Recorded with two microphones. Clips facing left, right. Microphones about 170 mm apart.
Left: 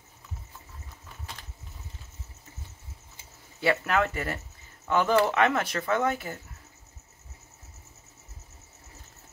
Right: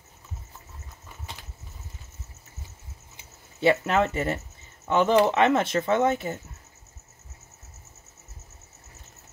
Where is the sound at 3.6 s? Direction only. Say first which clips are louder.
Right 4 dB; 25° right (ahead or behind).